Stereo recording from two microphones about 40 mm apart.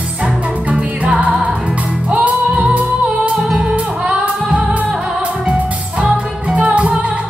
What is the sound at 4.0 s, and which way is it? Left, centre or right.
Music, right.